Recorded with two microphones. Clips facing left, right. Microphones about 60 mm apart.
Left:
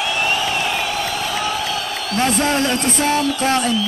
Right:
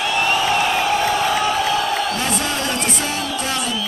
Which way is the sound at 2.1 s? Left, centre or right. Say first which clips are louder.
Left 4 dB; left.